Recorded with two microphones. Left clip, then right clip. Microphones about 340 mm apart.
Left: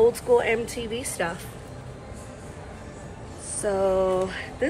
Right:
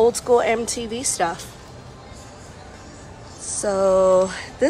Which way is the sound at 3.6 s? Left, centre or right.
Centre.